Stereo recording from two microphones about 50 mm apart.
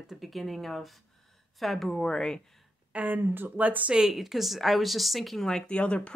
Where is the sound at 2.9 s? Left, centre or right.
Right.